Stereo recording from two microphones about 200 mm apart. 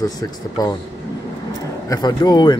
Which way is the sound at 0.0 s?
20° left (ahead or behind).